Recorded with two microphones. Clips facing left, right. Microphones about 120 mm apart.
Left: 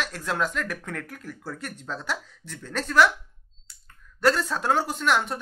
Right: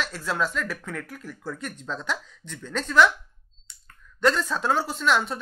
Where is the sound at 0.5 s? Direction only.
55° left (ahead or behind).